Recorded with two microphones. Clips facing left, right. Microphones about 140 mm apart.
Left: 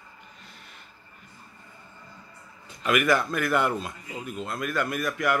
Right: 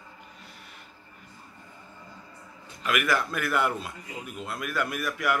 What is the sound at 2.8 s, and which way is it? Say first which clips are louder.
A man's voice: left 4 dB; centre (ahead or behind).